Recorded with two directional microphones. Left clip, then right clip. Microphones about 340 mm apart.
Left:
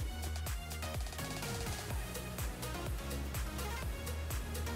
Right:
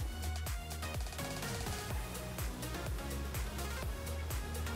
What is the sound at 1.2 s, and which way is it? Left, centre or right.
Music, centre.